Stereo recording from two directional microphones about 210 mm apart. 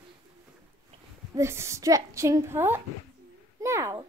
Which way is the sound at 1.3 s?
15° right (ahead or behind).